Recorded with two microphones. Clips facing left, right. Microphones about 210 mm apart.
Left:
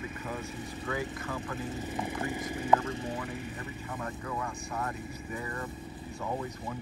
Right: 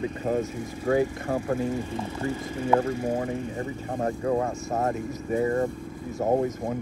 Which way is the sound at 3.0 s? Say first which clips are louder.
Right 9 dB; 40° right (ahead or behind).